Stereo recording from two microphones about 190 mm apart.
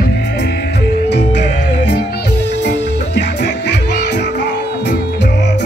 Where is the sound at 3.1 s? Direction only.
65° left (ahead or behind).